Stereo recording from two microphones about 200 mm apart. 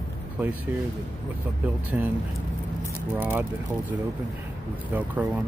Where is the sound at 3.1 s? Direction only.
10° right (ahead or behind).